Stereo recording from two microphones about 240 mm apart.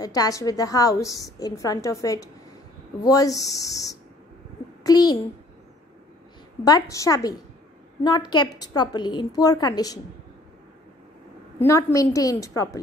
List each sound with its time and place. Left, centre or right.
0.0 s a woman's voice: centre
6.6 s a woman's voice: centre
11.6 s a woman's voice: centre